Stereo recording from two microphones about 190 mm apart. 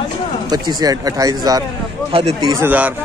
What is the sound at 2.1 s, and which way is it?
Speech, 30° right (ahead or behind).